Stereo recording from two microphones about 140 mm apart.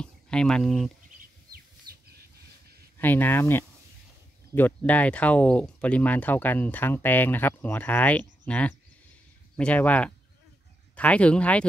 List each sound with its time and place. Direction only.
0.0 s speech: 5° left (ahead or behind)
3.0 s speech: 15° left (ahead or behind)